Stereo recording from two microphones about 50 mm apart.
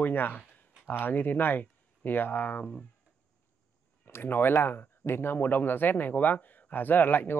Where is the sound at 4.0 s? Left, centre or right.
Left.